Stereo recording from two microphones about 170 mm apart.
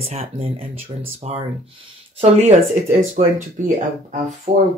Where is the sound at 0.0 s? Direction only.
35° right (ahead or behind).